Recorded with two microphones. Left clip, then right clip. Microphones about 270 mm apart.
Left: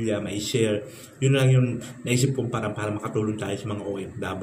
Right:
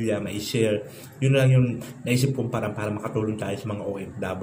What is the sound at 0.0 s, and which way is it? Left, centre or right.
A man's voice, centre.